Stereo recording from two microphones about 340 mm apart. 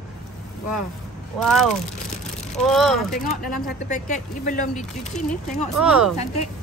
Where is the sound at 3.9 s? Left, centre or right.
Left.